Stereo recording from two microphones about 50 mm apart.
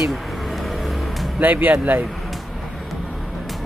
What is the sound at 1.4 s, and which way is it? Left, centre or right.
Speech, right.